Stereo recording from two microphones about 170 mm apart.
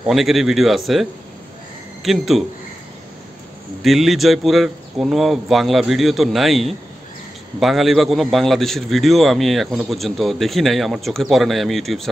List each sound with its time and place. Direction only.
0.0 s a man's voice: centre (ahead or behind)
2.0 s a man's voice: centre (ahead or behind)
3.8 s a man's voice: centre (ahead or behind)